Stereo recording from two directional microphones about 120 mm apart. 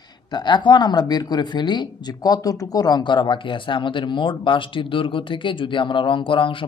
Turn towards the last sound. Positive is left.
turn(degrees=45)  # may be behind; listen again after turning